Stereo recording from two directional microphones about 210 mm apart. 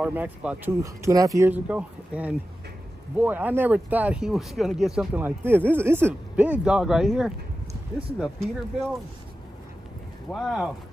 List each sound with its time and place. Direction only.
0.0 s speech: 5° right (ahead or behind)
10.3 s speech: centre (ahead or behind)